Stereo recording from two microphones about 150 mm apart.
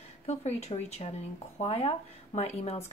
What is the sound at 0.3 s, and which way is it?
Speech, 45° left (ahead or behind).